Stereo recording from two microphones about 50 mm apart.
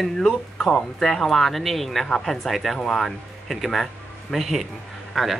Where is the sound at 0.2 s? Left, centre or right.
Centre.